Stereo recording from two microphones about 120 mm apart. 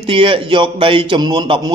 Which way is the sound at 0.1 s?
45° right (ahead or behind).